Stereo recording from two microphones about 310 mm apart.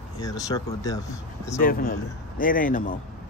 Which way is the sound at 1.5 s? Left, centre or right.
Left.